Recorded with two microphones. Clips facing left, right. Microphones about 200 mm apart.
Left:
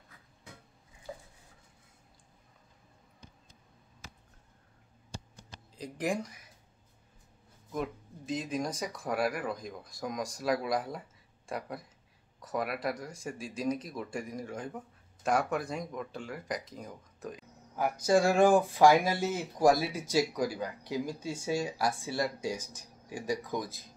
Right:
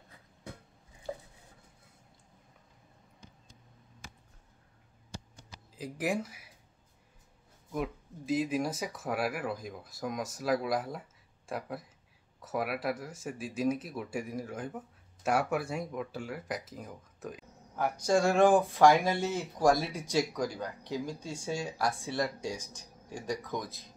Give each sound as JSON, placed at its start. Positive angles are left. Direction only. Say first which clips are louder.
{"t": 1.1, "sound": "a sound", "louder": "right 5 dB", "side_deg": -45}
{"t": 5.8, "sound": "speech", "louder": "even", "side_deg": -5}
{"t": 7.7, "sound": "speech", "louder": "even", "side_deg": -5}